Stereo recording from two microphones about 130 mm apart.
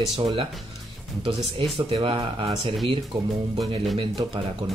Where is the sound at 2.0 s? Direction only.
45° right (ahead or behind).